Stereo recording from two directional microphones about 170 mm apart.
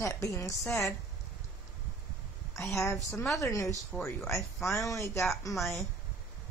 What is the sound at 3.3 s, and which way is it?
Speech, 20° left (ahead or behind).